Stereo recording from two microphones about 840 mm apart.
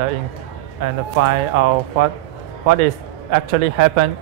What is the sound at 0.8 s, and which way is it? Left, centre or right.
A man's voice, right.